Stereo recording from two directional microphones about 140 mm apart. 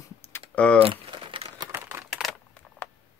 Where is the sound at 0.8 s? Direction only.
40° right (ahead or behind).